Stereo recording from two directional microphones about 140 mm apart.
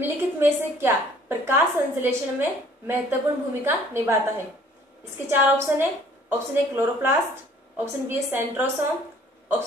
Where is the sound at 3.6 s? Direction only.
15° right (ahead or behind).